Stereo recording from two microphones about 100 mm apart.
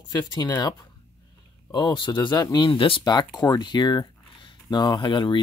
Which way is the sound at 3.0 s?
45° left (ahead or behind).